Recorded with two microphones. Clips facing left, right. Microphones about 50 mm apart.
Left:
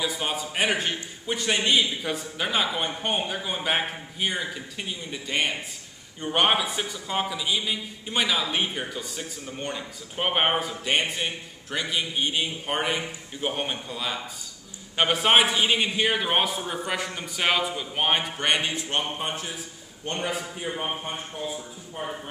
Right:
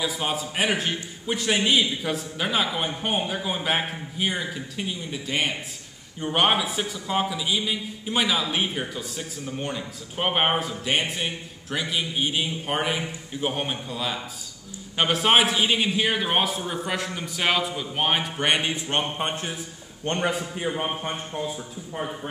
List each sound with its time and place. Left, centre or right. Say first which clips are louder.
0.0 s a man's voice: right 1 dB; centre
18.4 s speech: right 1 dB; centre
18.8 s a sound: right 2 dB; right
19.2 s a man's voice: right 2 dB; right
20.1 s a man's voice: right 4 dB; right